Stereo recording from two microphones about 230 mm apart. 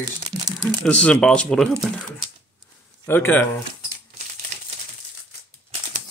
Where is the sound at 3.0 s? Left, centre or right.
Centre.